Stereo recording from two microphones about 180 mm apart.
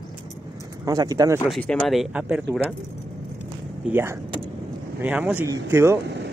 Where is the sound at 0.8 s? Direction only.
20° right (ahead or behind).